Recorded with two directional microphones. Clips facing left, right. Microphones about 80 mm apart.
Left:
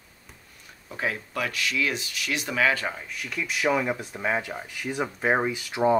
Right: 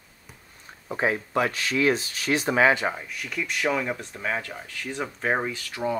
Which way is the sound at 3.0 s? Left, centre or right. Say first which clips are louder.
Right 1 dB; centre.